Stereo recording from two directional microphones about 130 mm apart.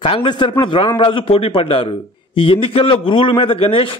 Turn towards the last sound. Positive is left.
turn(degrees=45)  # may be behind; listen again after turning